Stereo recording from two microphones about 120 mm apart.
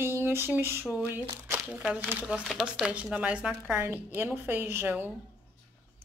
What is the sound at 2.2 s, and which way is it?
A woman's voice, centre (ahead or behind).